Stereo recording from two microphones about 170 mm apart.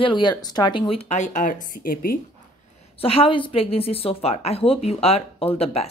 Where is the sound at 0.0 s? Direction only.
25° left (ahead or behind); by 2.1 s 60° left (ahead or behind).